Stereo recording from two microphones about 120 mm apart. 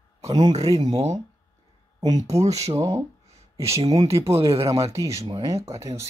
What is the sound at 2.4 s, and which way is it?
Speech, 65° right (ahead or behind).